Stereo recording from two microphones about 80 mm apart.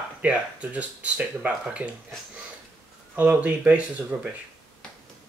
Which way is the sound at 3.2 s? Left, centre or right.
Centre.